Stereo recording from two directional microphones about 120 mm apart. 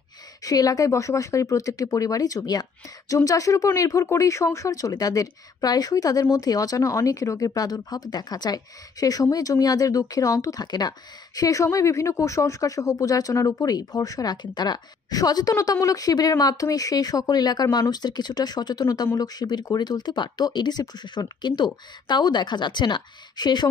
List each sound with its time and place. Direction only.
0.4 s speech: 30° left (ahead or behind)